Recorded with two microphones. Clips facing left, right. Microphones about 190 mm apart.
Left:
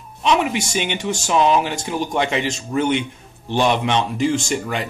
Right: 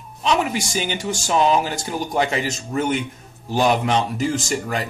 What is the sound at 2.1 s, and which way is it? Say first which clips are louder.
Speech: even; 40° right (ahead or behind).